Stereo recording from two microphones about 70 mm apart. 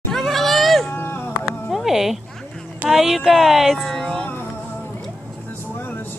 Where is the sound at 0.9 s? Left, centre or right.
Left.